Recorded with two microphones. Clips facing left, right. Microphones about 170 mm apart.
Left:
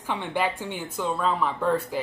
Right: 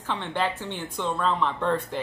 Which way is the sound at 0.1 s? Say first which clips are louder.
Left 1 dB; 10° left (ahead or behind).